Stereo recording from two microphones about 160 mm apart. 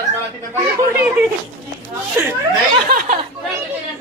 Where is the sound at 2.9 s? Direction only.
55° right (ahead or behind).